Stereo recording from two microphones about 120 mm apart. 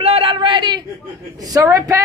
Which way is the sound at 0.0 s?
55° right (ahead or behind).